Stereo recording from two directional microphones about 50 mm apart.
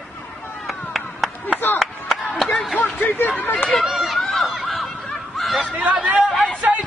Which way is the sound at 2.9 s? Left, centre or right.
Left.